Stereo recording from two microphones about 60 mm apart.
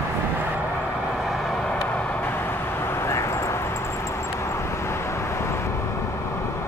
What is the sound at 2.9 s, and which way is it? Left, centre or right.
Vehicle, left.